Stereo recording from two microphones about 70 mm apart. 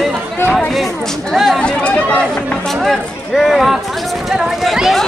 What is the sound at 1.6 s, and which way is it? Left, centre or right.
Speech, centre.